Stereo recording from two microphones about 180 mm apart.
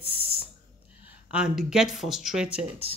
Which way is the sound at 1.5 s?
5° right (ahead or behind).